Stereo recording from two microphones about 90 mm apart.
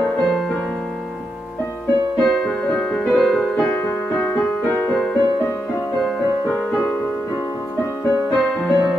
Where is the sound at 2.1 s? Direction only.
5° left (ahead or behind).